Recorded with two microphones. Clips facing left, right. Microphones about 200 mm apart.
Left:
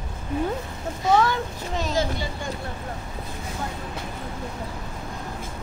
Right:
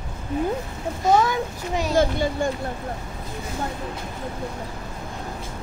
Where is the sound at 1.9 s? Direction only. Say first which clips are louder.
Right 10 dB; 55° right (ahead or behind).